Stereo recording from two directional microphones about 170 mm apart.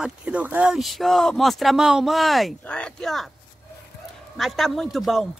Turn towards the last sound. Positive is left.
turn(degrees=0)  # may be behind; listen again after turning